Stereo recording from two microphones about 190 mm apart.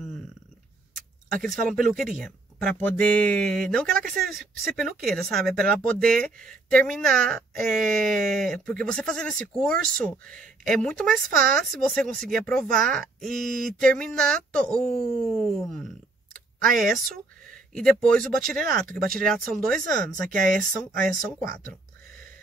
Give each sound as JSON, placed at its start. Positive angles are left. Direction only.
{"t": 1.4, "sound": "speech", "side_deg": 0}
{"t": 17.1, "sound": "speech", "side_deg": 5}